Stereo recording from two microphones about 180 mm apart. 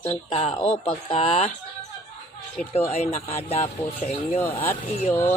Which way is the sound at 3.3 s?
35° left (ahead or behind).